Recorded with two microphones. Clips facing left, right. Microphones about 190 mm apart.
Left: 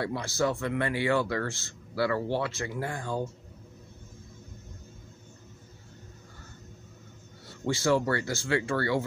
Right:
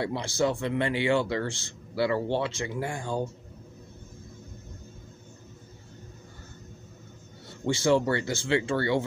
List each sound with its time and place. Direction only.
0.0 s speech: 25° right (ahead or behind)
7.4 s speech: 20° right (ahead or behind)